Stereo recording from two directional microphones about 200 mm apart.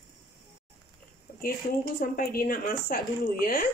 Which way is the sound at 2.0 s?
45° left (ahead or behind).